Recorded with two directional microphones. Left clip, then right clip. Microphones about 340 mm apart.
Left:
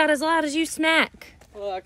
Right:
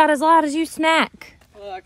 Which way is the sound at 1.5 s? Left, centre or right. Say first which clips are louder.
Left 3 dB; left.